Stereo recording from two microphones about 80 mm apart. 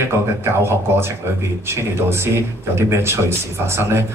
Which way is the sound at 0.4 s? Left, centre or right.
Right.